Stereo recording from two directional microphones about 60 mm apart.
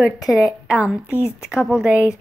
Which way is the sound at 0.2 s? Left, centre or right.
Centre.